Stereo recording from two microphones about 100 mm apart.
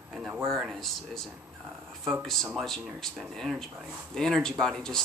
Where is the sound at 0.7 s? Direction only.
5° left (ahead or behind).